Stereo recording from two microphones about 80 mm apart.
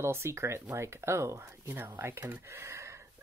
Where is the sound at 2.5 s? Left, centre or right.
Right.